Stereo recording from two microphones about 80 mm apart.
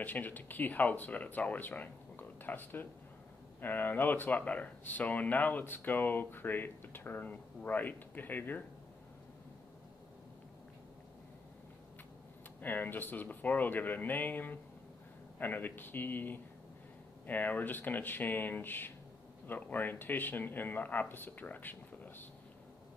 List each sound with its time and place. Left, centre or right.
0.0 s speech: left
12.6 s speech: left